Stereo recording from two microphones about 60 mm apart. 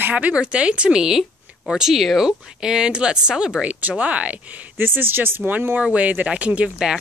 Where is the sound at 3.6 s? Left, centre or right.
Right.